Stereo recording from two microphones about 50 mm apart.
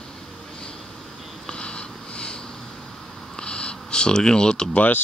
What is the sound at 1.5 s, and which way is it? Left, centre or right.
Sniff, centre.